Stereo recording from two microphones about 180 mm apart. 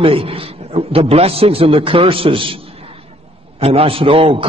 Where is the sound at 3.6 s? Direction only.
30° right (ahead or behind).